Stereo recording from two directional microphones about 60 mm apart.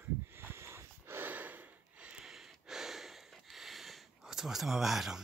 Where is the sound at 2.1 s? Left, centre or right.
Centre.